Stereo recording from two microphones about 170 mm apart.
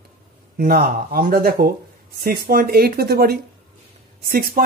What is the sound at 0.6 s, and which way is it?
Speech, 60° right (ahead or behind).